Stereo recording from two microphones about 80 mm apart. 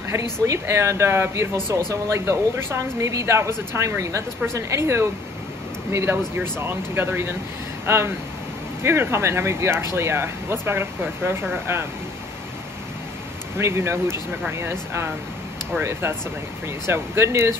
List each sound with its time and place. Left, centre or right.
0.1 s a woman's voice: right
13.6 s a woman's voice: right